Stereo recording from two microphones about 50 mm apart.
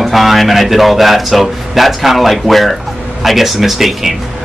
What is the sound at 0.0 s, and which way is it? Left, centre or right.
A man's voice, centre.